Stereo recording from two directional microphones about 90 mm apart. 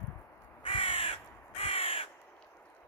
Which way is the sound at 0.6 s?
85° left.